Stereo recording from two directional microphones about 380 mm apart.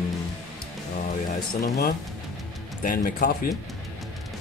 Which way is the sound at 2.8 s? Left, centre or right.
Left.